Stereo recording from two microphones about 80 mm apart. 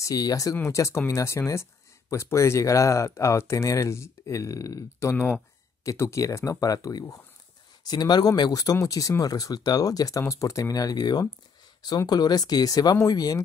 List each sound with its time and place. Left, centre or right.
0.0 s speech: left
0.6 s speech: left